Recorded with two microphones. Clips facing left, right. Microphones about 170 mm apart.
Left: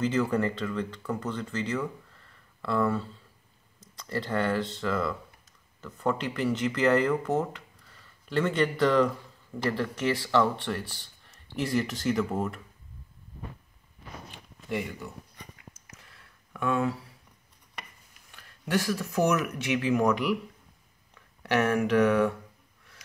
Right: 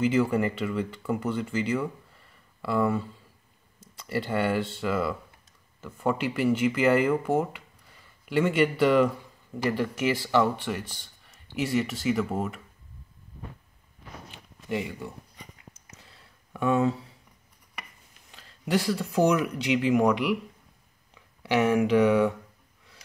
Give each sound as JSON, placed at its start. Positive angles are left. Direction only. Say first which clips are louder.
{"t": 0.0, "sound": "speech", "louder": "right 2 dB", "side_deg": -10}
{"t": 15.5, "sound": "a sound", "louder": "even", "side_deg": -25}
{"t": 18.3, "sound": "speech", "louder": "right 2 dB", "side_deg": -20}